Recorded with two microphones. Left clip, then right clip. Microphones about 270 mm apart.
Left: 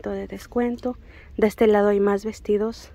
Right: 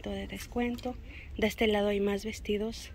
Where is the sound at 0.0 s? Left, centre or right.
Centre.